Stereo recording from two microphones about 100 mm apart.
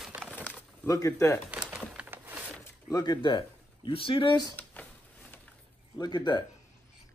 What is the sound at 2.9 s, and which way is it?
Speech, 35° left (ahead or behind).